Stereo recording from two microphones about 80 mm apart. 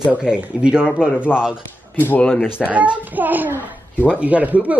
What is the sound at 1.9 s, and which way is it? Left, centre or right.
Speech, left.